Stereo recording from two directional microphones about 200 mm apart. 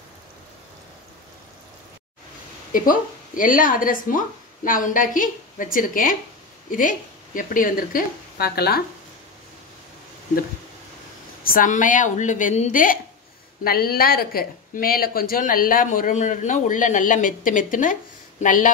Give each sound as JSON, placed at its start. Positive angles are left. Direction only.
{"t": 2.7, "sound": "a woman's voice", "side_deg": 45}
{"t": 11.4, "sound": "speech", "side_deg": 40}